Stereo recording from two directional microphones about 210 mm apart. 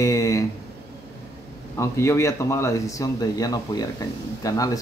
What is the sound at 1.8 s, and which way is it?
Speech, 15° left (ahead or behind).